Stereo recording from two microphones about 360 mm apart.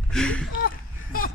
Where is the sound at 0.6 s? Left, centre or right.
Left.